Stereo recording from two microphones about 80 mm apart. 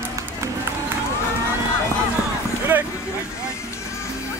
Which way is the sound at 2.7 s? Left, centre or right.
Right.